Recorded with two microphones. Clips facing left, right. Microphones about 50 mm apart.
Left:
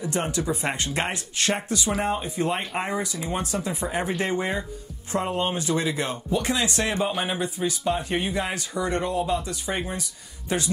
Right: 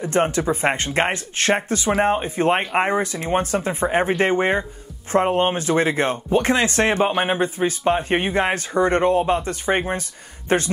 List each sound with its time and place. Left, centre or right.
0.0 s speech: right